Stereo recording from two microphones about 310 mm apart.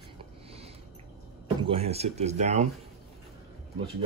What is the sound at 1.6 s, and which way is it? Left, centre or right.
Speech, centre.